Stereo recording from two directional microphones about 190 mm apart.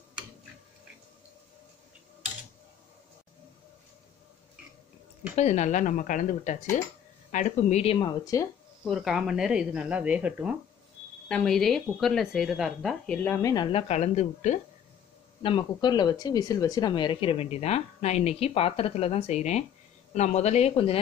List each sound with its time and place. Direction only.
5.3 s speech: 35° left (ahead or behind)
8.3 s speech: 15° left (ahead or behind)
8.8 s speech: centre (ahead or behind)
11.2 s speech: 5° left (ahead or behind)
13.7 s speech: 30° left (ahead or behind)
15.4 s speech: 25° left (ahead or behind)